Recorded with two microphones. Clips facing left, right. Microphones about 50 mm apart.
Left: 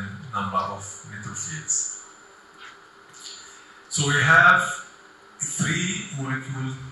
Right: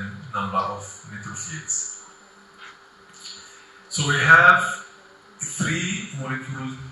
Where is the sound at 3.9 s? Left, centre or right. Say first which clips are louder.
Right 2 dB; centre.